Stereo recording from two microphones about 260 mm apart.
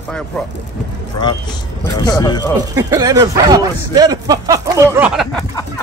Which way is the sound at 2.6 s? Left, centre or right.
Centre.